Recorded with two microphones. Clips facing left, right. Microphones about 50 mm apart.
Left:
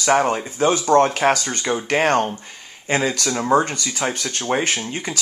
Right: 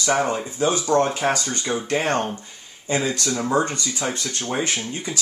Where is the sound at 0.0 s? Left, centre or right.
Left.